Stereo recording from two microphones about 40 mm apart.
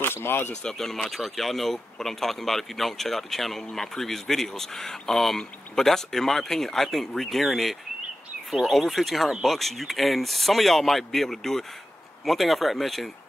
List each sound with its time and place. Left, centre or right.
0.0 s speech: left
0.7 s speech: centre